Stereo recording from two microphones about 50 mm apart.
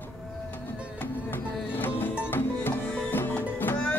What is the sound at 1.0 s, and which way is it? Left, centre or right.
Music, left.